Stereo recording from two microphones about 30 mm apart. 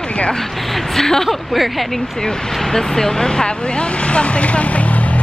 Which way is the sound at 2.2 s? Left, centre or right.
Centre.